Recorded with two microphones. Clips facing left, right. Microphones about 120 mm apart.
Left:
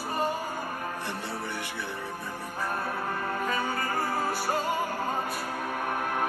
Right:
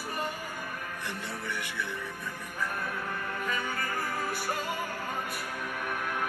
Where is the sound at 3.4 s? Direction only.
35° left (ahead or behind).